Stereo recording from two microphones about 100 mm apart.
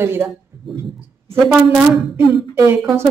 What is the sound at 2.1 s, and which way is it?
Speech, 30° right (ahead or behind).